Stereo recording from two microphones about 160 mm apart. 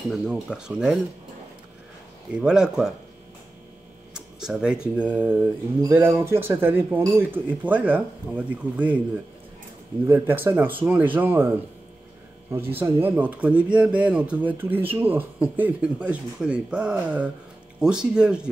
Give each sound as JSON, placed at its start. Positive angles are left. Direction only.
{"t": 0.1, "sound": "speech", "side_deg": -5}
{"t": 2.3, "sound": "speech", "side_deg": -5}
{"t": 4.1, "sound": "speech", "side_deg": -5}
{"t": 10.0, "sound": "speech", "side_deg": -10}